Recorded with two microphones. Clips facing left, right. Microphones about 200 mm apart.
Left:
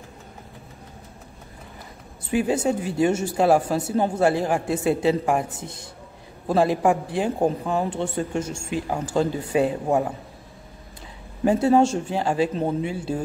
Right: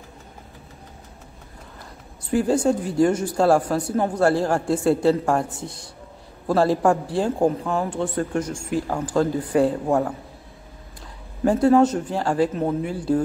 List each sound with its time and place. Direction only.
2.3 s a man's voice: 20° left (ahead or behind)
11.4 s a man's voice: 25° left (ahead or behind)